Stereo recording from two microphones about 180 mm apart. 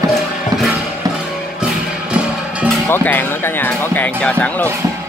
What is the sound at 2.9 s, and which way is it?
Speech, 10° left (ahead or behind).